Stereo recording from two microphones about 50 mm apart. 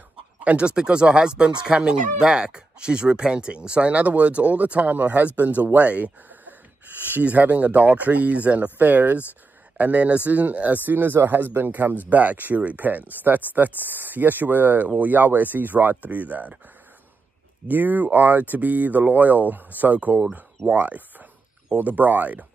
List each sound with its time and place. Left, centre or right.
0.4 s speech: right
17.6 s speech: right